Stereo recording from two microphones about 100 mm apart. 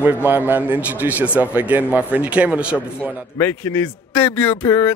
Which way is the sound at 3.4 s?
20° left (ahead or behind).